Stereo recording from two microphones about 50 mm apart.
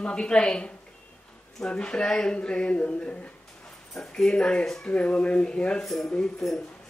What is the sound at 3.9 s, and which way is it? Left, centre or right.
Speech, centre.